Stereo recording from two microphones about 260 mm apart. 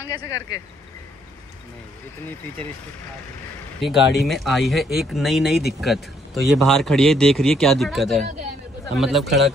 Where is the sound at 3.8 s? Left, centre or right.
Centre.